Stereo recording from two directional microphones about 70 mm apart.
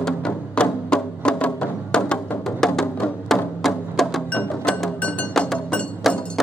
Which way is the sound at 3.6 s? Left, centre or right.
Centre.